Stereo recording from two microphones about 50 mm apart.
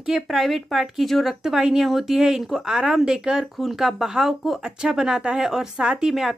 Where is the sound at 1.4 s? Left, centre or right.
Centre.